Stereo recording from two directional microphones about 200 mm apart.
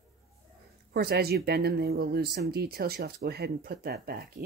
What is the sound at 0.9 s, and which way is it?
Speech, 50° right (ahead or behind).